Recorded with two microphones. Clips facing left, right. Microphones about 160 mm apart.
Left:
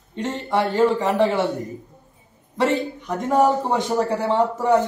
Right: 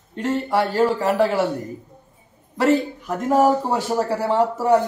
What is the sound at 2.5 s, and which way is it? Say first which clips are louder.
A man's voice: right 3 dB; centre (ahead or behind).